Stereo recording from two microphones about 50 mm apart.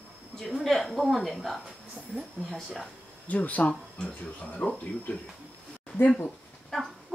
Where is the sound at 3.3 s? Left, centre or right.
Left.